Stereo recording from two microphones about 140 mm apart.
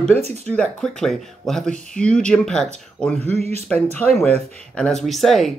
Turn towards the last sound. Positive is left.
turn(degrees=0)  # may be behind; listen again after turning